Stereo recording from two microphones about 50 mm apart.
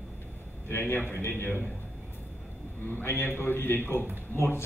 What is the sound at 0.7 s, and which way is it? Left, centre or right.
A man's voice, left.